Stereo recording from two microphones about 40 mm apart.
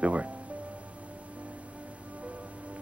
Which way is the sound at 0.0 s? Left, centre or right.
Right.